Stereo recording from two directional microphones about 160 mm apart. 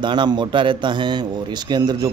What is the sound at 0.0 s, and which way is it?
A man's voice, 30° right (ahead or behind).